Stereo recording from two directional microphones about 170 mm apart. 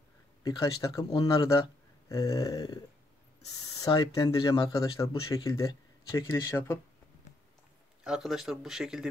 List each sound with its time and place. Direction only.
0.4 s speech: 20° left (ahead or behind)
8.0 s speech: centre (ahead or behind)